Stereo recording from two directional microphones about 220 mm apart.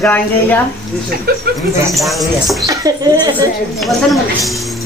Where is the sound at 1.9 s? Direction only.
Centre (ahead or behind).